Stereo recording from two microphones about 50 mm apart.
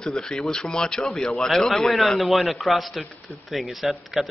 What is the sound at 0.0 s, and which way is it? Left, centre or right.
Speech, centre.